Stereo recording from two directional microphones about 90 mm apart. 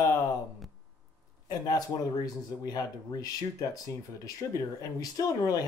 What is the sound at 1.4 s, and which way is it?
Speech, 45° left (ahead or behind).